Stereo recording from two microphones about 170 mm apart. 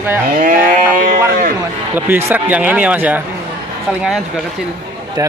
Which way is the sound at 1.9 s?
10° right (ahead or behind).